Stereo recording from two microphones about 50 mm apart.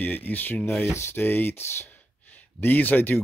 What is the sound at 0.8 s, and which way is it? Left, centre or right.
Speech, left.